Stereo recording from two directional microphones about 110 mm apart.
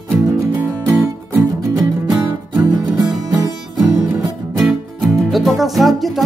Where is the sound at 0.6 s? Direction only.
20° right (ahead or behind).